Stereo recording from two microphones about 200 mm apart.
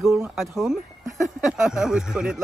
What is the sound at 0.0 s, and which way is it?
Speech, centre (ahead or behind).